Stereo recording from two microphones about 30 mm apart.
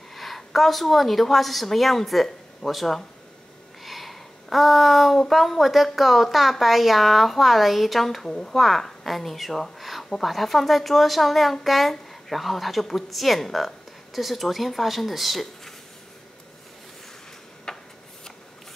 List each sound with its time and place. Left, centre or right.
0.1 s a woman's voice: centre
3.8 s a sound: centre
5.3 s speech: centre
8.3 s speech: centre
8.5 s speech: centre
17.7 s a sound: left